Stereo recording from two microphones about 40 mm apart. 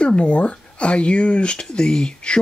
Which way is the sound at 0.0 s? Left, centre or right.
Left.